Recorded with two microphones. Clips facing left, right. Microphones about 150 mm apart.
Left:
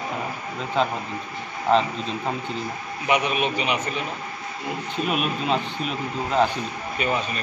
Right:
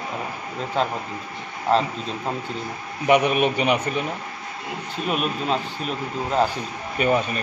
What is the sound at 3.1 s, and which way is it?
Speech, 55° right (ahead or behind).